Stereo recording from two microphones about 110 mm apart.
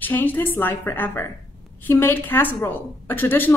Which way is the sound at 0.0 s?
15° left (ahead or behind).